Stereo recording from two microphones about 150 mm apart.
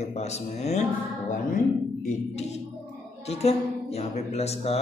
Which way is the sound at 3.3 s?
45° left (ahead or behind).